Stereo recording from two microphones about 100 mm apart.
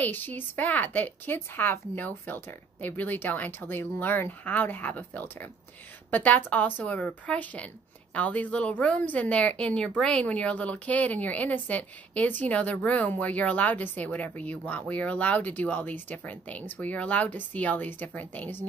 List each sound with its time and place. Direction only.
0.0 s a woman's voice: 20° left (ahead or behind)